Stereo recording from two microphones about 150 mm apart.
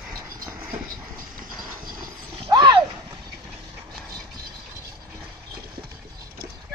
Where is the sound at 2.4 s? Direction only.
30° right (ahead or behind).